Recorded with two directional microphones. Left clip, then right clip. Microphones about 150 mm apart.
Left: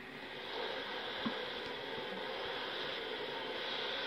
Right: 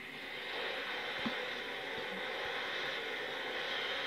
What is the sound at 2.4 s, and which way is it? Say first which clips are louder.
Vehicle: right 2 dB; 10° left (ahead or behind).